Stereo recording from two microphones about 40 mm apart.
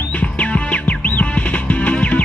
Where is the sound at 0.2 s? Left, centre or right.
Left.